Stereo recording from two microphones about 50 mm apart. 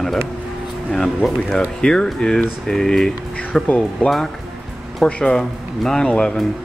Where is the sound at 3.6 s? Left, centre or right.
Left.